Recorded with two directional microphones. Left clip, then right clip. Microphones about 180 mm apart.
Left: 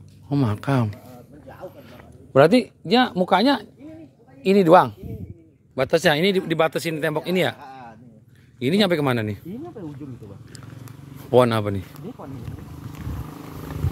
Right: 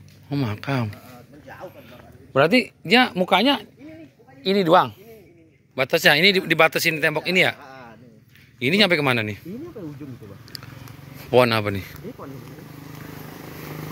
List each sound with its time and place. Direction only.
0.3 s speech: 30° left (ahead or behind)
1.8 s a sound: 30° left (ahead or behind)
2.6 s a man's voice: 5° left (ahead or behind)
4.6 s a man's voice: 25° left (ahead or behind)
8.5 s speech: 20° left (ahead or behind)
11.2 s a man's voice: 20° left (ahead or behind)